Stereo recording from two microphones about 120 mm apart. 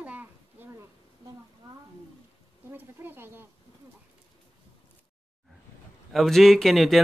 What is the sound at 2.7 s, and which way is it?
Speech, 20° right (ahead or behind).